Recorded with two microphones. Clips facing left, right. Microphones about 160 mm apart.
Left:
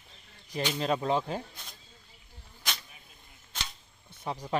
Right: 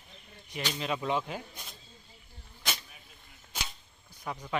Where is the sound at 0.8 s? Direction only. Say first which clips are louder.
Left 3 dB; 35° left (ahead or behind).